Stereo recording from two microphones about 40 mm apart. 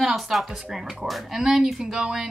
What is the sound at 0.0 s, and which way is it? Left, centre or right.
A woman's voice, centre.